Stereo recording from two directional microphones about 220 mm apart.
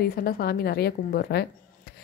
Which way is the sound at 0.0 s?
45° left (ahead or behind).